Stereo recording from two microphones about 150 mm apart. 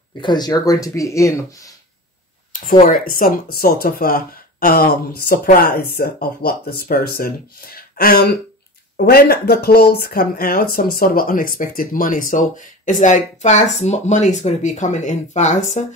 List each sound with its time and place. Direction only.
0.2 s speech: 30° left (ahead or behind)
2.8 s speech: 65° left (ahead or behind)